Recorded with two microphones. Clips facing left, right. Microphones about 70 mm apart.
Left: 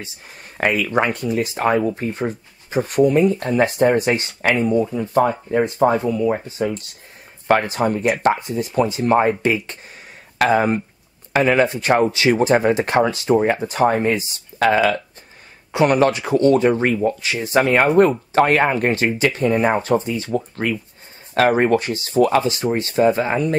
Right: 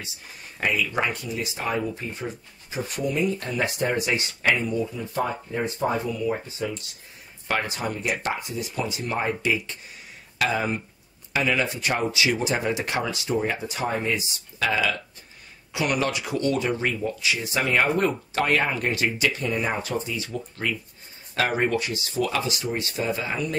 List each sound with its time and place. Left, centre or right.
0.6 s speech: left